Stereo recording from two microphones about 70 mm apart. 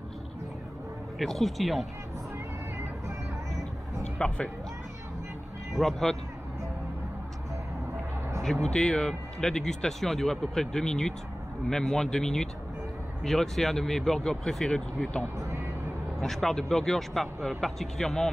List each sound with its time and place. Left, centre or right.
1.1 s speech: centre
3.1 s music: right
4.2 s speech: centre
5.8 s speech: centre
8.4 s a sound: centre
8.6 s speech: centre
15.3 s vehicle: right
16.2 s speech: centre